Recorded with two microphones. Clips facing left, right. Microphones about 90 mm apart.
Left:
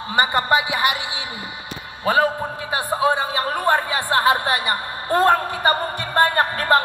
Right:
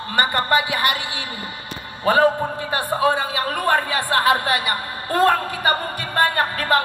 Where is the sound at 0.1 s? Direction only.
15° left (ahead or behind).